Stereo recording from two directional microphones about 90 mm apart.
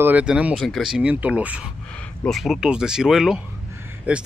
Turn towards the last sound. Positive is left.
turn(degrees=-10)  # may be behind; listen again after turning